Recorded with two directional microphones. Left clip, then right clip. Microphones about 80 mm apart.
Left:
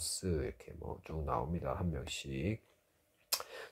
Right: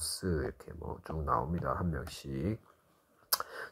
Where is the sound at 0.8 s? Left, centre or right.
Right.